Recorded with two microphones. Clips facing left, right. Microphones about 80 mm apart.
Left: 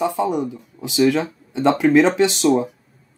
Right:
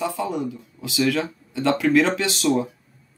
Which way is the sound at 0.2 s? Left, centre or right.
Centre.